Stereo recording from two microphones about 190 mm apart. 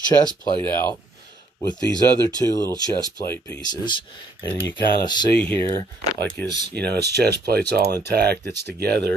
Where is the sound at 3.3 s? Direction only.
20° left (ahead or behind).